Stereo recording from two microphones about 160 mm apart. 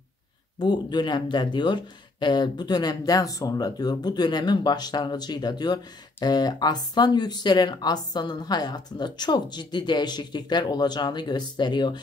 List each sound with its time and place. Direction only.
0.6 s speech: 30° left (ahead or behind)